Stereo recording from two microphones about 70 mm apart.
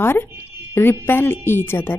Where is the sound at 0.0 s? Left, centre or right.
Left.